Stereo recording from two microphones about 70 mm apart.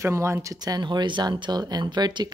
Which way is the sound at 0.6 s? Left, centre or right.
Right.